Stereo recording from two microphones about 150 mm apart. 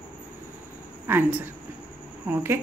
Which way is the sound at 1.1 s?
15° right (ahead or behind).